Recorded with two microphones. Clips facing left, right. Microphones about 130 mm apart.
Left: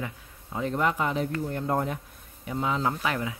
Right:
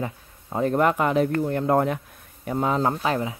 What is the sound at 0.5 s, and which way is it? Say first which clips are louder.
Speech: right 6 dB; 50° right (ahead or behind).